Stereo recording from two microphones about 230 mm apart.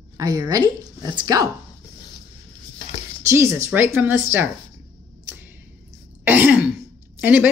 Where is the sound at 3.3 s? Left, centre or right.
Centre.